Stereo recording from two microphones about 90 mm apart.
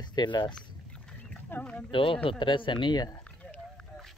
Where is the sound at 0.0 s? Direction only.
55° left (ahead or behind).